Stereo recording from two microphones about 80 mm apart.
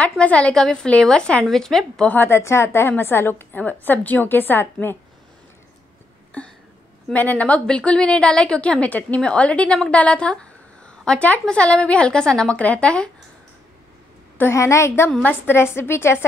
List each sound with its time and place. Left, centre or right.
0.0 s a woman's voice: centre
2.0 s a woman's voice: left
7.1 s a woman's voice: centre
14.5 s a woman's voice: left